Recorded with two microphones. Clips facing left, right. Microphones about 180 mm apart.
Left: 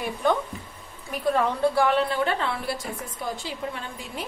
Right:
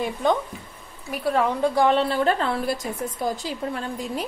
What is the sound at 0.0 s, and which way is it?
A woman's voice, 15° right (ahead or behind).